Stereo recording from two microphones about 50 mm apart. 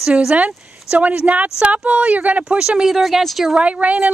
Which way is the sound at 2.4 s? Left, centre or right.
Centre.